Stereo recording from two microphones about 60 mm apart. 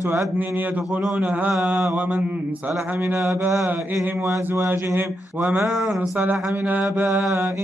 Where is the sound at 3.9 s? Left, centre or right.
Right.